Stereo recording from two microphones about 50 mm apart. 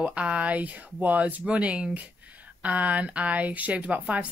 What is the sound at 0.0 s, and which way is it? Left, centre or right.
A woman's voice, right.